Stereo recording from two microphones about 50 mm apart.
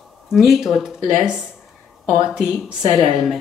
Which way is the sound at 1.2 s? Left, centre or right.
Centre.